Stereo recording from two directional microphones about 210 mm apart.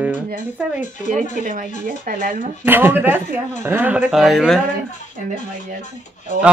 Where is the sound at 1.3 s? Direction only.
40° right (ahead or behind).